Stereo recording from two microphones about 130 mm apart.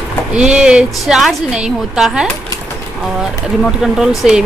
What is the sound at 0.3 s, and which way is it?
A woman's voice, 5° right (ahead or behind).